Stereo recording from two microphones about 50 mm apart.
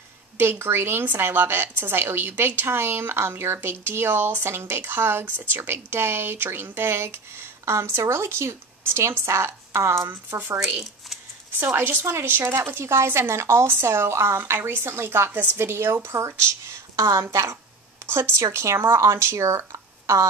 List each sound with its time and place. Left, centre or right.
0.4 s a woman's voice: right
8.0 s speech: right
10.6 s speech: centre
11.6 s a woman's voice: right
12.1 s speech: right
14.5 s a woman's voice: right
18.0 s speech: right